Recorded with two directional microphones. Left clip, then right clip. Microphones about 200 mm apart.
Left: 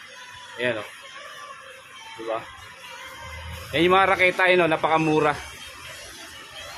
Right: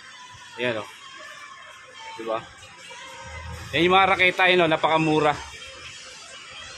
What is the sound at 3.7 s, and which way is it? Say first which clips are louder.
A man's voice: even; centre (ahead or behind).